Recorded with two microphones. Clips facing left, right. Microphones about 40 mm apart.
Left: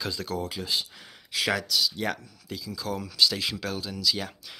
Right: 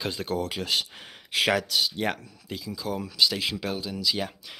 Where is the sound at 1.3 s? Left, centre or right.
Right.